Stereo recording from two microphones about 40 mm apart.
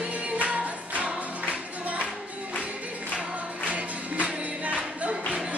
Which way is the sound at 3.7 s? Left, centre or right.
Right.